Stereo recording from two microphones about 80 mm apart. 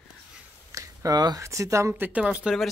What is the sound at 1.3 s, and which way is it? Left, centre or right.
Speech, right.